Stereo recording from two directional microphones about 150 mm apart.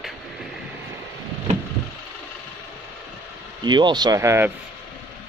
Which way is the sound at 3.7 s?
30° right (ahead or behind).